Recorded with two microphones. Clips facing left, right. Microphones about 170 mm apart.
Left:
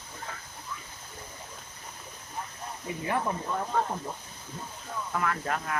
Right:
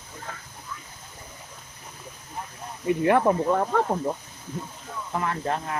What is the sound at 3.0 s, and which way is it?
Speech, 70° right (ahead or behind).